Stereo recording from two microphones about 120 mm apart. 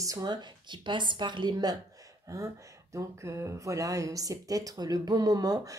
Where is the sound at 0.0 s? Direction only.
30° right (ahead or behind).